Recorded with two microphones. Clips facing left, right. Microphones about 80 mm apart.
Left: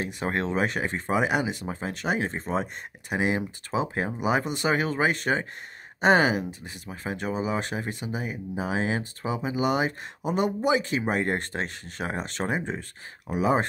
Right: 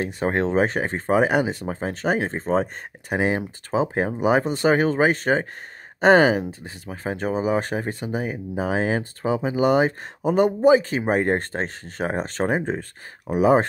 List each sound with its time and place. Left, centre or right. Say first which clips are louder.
0.0 s speech: right 6 dB; right